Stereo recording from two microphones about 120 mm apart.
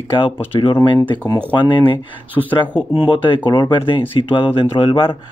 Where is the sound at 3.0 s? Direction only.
45° left (ahead or behind).